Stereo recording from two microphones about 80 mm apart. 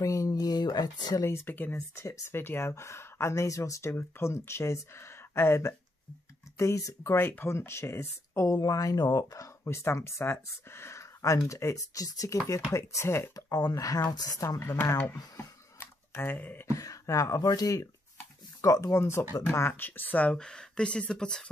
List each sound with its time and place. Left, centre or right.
0.0 s a sound: left
1.2 s speech: left
1.8 s speech: left
8.5 s speech: left
14.6 s speech: left
15.3 s a sound: left
16.7 s speech: left
20.3 s speech: centre